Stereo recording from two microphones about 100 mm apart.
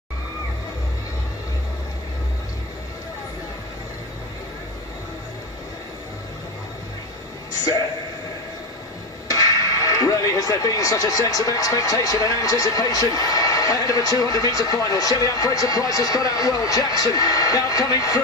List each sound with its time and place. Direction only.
9.3 s speech: 35° left (ahead or behind)